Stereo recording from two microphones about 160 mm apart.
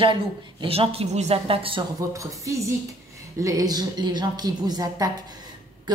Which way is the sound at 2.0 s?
20° right (ahead or behind).